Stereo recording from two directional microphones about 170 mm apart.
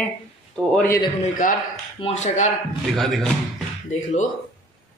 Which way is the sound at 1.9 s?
35° left (ahead or behind).